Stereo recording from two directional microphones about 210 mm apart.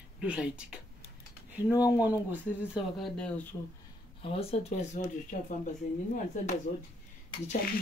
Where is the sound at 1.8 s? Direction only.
10° right (ahead or behind).